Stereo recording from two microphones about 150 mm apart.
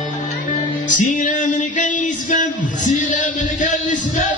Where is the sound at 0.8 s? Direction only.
60° left (ahead or behind).